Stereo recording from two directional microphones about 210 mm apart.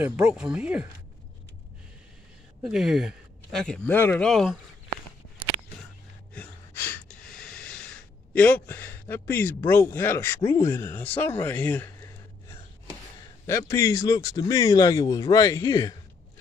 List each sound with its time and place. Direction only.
0.0 s speech: 5° right (ahead or behind)
2.6 s speech: centre (ahead or behind)
6.3 s a sound: 5° left (ahead or behind)
13.5 s speech: 15° left (ahead or behind)